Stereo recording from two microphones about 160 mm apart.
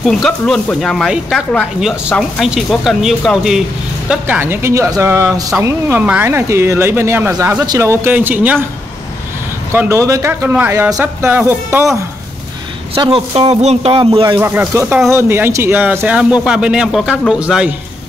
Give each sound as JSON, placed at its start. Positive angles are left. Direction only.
{"t": 0.0, "sound": "speech", "side_deg": 0}
{"t": 9.7, "sound": "speech", "side_deg": -15}
{"t": 12.9, "sound": "a man's voice", "side_deg": -35}
{"t": 13.9, "sound": "speech", "side_deg": -30}
{"t": 14.4, "sound": "speech", "side_deg": -15}